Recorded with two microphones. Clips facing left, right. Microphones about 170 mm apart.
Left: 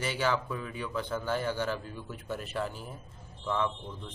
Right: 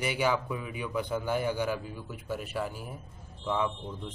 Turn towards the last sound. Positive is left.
turn(degrees=-10)  # may be behind; listen again after turning